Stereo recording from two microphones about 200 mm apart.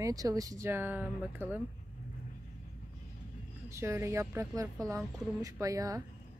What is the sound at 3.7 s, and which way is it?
Speech, 15° right (ahead or behind).